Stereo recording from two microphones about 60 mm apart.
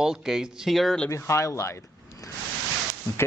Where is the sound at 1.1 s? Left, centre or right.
Left.